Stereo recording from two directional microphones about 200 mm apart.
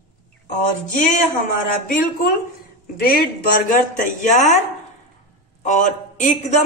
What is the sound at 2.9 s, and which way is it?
A woman's voice, 50° left (ahead or behind).